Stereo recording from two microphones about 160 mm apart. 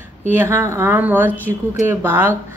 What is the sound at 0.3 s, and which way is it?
Speech, 15° right (ahead or behind).